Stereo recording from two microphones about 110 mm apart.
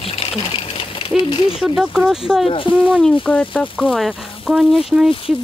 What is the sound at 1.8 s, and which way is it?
Speech, 5° right (ahead or behind).